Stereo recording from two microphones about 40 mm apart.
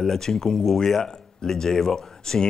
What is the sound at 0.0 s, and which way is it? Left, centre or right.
Speech, centre.